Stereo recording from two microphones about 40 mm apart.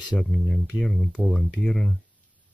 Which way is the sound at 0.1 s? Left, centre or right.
Left.